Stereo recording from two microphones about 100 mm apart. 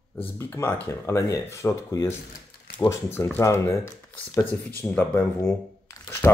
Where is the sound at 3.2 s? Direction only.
25° left (ahead or behind).